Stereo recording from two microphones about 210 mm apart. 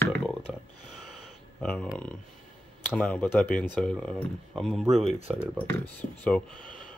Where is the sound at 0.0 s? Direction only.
10° left (ahead or behind).